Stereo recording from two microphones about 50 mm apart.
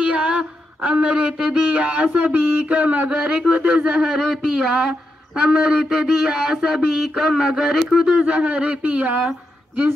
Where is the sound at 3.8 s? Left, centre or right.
Centre.